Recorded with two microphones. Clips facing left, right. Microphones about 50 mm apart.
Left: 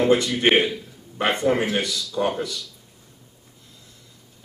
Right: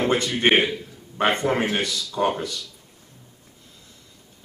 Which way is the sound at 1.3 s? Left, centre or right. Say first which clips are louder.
Left 1 dB; right.